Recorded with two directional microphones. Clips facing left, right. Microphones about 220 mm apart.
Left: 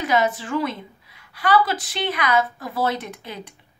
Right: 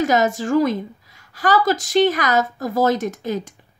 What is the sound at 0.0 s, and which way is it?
A woman's voice, 45° right (ahead or behind).